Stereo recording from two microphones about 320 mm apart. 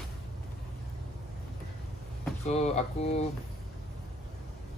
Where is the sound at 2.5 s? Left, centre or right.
Left.